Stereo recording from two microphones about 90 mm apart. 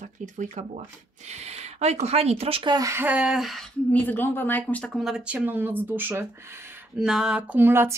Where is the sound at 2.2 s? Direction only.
90° right.